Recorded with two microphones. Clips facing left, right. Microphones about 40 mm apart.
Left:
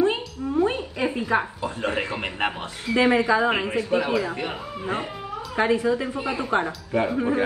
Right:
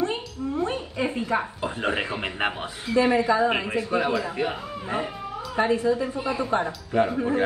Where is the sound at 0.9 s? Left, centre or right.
Left.